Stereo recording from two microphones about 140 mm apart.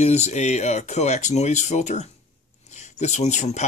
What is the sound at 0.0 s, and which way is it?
Speech, 50° left (ahead or behind).